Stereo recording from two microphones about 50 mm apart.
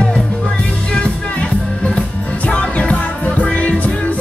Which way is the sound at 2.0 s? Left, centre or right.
Left.